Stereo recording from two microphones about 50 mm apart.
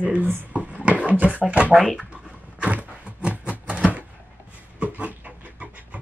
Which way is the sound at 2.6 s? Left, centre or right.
Right.